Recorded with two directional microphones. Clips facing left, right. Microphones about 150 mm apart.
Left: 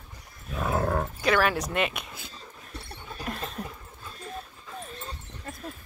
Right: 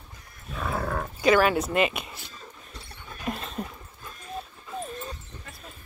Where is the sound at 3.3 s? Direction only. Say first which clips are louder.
Right 3 dB; centre (ahead or behind).